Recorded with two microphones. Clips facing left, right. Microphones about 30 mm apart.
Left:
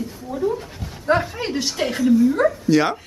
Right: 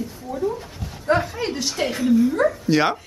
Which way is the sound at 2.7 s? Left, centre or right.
Centre.